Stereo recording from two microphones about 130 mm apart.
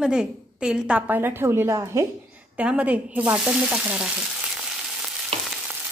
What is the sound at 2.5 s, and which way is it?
A woman's voice, 10° right (ahead or behind).